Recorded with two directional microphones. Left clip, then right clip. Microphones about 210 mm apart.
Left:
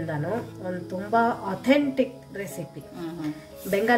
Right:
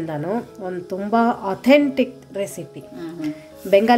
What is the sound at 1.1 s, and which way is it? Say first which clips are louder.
Speech: right 4 dB; 40° right (ahead or behind).